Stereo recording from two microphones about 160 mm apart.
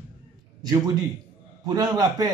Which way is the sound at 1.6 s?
25° right (ahead or behind).